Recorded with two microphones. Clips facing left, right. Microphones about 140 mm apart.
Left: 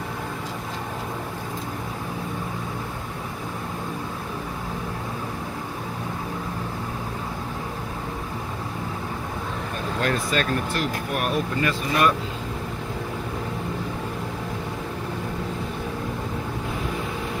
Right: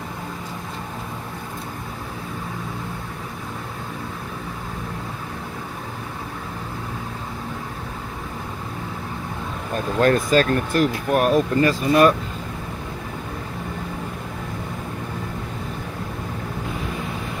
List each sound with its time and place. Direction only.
9.9 s speech: 45° right (ahead or behind)